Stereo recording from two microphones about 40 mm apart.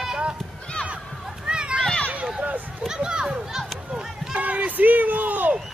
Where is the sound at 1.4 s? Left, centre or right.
Right.